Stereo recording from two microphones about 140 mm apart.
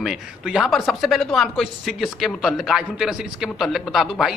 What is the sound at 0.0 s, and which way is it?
Speech, centre (ahead or behind).